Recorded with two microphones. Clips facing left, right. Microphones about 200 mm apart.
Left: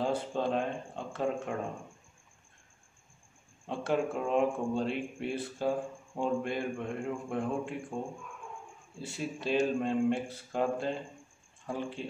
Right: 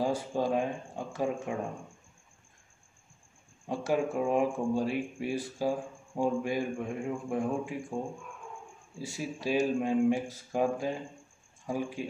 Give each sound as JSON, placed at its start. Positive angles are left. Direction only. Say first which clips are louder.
{"t": 0.3, "sound": "speech", "louder": "right 2 dB", "side_deg": -10}
{"t": 3.6, "sound": "speech", "louder": "right 1 dB", "side_deg": -10}
{"t": 9.2, "sound": "speech", "louder": "right 1 dB", "side_deg": -10}